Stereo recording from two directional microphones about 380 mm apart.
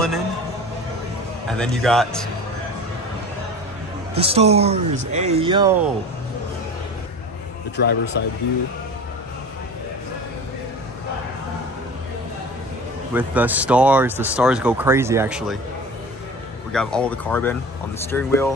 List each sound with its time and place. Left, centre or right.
1.5 s speech: centre
4.1 s speech: centre
7.7 s a man's voice: left
13.1 s speech: centre
16.7 s speech: centre